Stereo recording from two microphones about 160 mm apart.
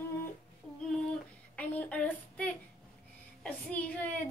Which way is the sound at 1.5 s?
10° left (ahead or behind).